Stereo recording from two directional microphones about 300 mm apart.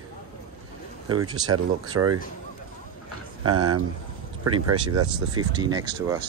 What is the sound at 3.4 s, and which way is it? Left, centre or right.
Speech, right.